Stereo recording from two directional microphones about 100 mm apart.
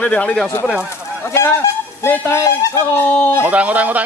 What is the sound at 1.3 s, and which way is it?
Speech, 25° left (ahead or behind).